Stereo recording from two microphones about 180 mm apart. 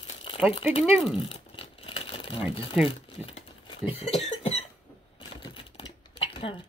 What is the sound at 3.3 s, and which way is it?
Cough, 30° left (ahead or behind).